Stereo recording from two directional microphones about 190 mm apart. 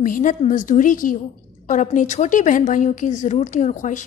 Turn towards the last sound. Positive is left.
turn(degrees=40)  # may be behind; listen again after turning